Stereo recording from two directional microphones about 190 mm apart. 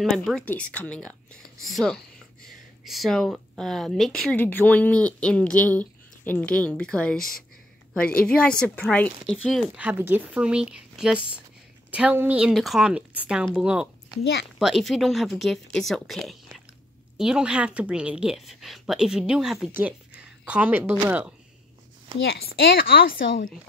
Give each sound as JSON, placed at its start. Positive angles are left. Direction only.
{"t": 0.0, "sound": "a woman's voice", "side_deg": 0}
{"t": 22.6, "sound": "speech", "side_deg": 50}